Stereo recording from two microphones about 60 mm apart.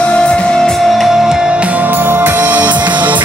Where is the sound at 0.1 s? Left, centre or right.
Centre.